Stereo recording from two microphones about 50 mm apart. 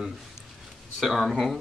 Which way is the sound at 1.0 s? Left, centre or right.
Centre.